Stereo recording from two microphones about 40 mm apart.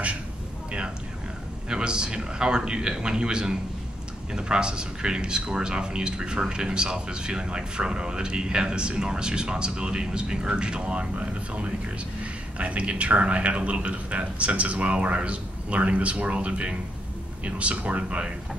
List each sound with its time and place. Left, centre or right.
1.7 s a man's voice: centre; by 18.2 s right